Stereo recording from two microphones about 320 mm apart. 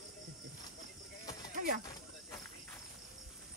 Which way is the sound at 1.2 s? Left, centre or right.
Centre.